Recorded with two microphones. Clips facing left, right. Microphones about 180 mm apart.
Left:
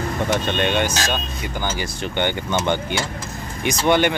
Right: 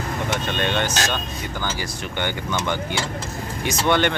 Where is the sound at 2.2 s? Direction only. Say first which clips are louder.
Left 4 dB; 25° left (ahead or behind).